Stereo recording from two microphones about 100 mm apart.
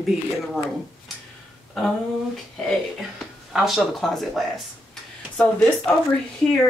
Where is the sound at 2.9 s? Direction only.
5° right (ahead or behind).